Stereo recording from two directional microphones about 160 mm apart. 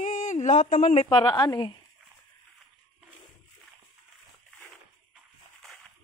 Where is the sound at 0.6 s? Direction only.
50° left (ahead or behind).